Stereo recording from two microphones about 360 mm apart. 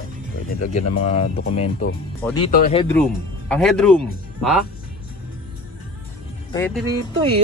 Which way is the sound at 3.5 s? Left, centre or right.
Centre.